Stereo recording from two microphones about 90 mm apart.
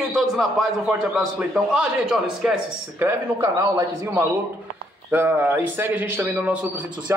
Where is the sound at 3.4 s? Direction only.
40° right (ahead or behind).